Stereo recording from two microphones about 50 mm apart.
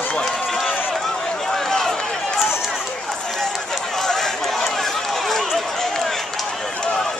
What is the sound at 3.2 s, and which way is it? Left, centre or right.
Run, centre.